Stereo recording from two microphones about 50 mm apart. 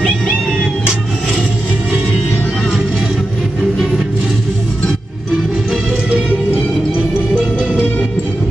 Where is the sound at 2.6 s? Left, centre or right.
Centre.